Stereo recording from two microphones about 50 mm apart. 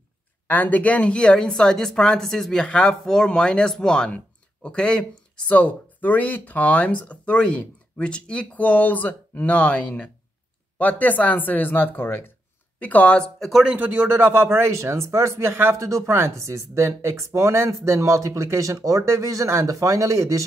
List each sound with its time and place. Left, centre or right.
0.5 s a woman's voice: left; by 2.6 s centre
2.6 s a woman's voice: centre
5.5 s speech: left
12.7 s speech: left
13.7 s speech: right
15.7 s speech: right